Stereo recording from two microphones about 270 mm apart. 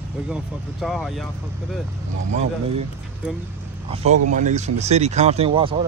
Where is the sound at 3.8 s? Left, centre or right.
Right.